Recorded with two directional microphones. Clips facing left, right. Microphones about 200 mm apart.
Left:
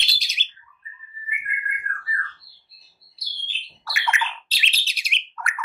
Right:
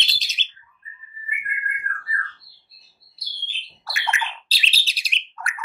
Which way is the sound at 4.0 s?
35° right (ahead or behind).